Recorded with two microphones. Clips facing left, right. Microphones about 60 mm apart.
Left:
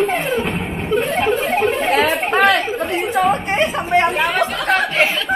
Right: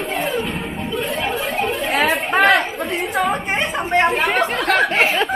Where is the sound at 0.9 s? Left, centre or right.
Left.